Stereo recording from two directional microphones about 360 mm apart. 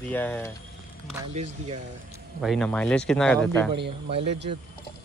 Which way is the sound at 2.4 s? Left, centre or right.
Centre.